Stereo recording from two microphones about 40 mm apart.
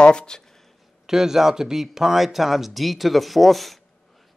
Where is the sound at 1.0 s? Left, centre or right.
Centre.